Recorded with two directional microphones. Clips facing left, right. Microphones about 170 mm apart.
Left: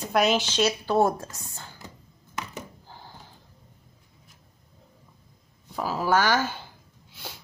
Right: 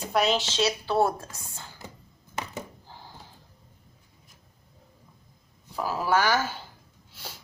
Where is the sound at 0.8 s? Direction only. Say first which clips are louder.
Left 2 dB; 20° left (ahead or behind).